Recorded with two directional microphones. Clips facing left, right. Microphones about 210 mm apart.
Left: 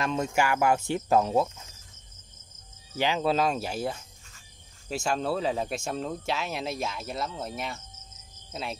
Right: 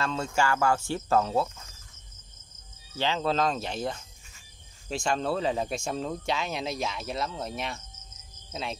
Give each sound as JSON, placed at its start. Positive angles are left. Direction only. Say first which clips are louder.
{"t": 0.0, "sound": "cricket", "louder": "left 1 dB", "side_deg": 15}
{"t": 3.0, "sound": "cricket", "louder": "left 1 dB", "side_deg": 10}
{"t": 4.8, "sound": "speech", "louder": "even", "side_deg": 5}